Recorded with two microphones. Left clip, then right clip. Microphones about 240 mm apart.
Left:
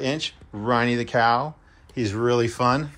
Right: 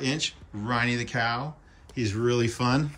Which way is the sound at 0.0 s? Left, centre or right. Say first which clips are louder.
Left 3 dB; centre.